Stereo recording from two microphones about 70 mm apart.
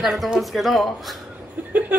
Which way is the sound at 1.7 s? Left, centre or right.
Right.